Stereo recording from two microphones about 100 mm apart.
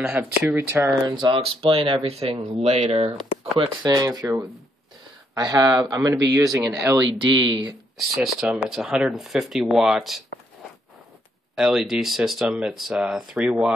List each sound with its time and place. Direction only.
0.0 s speech: 10° right (ahead or behind)
1.3 s speech: 70° right (ahead or behind)
2.0 s speech: 85° right
3.5 s speech: 45° right (ahead or behind)
7.2 s speech: 50° right (ahead or behind)
8.0 s speech: centre (ahead or behind)
11.5 s speech: 5° right (ahead or behind)